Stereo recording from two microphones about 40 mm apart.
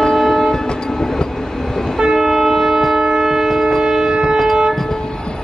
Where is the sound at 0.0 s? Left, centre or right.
Centre.